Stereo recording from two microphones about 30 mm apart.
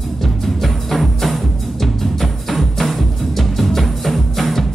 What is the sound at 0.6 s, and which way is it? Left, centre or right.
Music, centre.